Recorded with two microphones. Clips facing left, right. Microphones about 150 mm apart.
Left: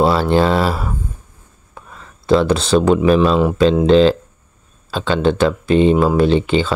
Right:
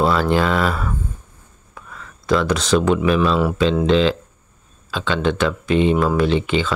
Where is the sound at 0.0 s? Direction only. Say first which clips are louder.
Left 3 dB; 30° left (ahead or behind).